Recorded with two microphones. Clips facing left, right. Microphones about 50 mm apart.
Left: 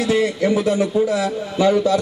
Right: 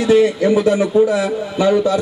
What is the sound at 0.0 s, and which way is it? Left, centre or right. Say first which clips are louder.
A man's voice: right 5 dB; centre.